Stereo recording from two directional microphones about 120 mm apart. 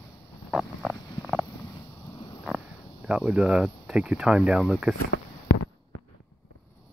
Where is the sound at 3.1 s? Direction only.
5° right (ahead or behind).